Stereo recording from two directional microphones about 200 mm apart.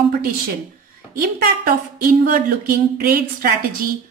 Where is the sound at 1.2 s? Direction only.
45° right (ahead or behind).